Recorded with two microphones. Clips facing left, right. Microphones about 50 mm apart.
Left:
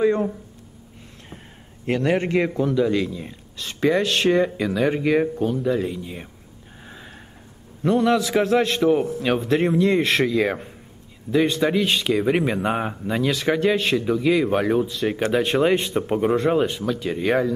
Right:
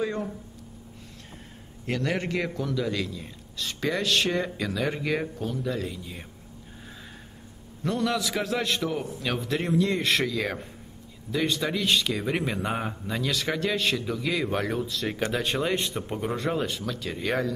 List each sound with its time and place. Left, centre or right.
0.0 s a man's voice: left
1.9 s a man's voice: left
7.8 s a man's voice: left